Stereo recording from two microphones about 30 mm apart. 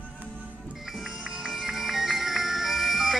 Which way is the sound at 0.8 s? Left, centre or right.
Centre.